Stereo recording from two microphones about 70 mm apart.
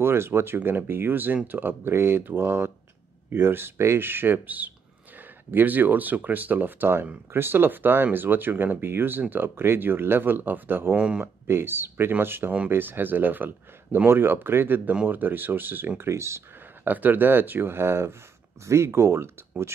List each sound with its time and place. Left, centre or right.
0.0 s speech: right
11.0 s speech: centre
11.4 s speech: right
16.0 s speech: right
16.8 s speech: right